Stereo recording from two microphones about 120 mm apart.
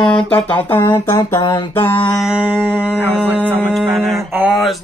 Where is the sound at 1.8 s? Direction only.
45° left (ahead or behind).